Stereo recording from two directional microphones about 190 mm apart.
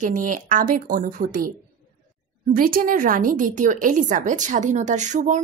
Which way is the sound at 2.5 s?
50° right (ahead or behind).